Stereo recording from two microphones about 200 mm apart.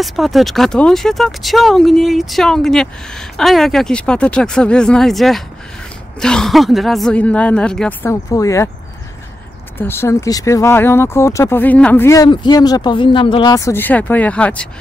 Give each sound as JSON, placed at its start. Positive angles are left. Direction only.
{"t": 0.0, "sound": "speech", "side_deg": 0}
{"t": 8.1, "sound": "speech", "side_deg": 15}
{"t": 9.8, "sound": "speech", "side_deg": 10}